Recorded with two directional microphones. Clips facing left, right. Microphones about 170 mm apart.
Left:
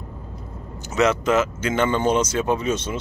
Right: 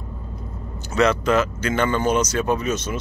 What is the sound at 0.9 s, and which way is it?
Speech, 20° left (ahead or behind).